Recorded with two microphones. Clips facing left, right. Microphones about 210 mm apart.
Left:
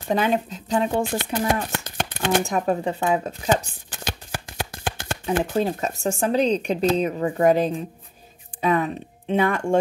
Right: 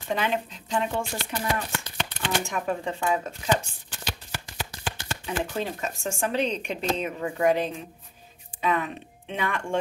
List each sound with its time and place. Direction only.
0.1 s speech: 40° left (ahead or behind)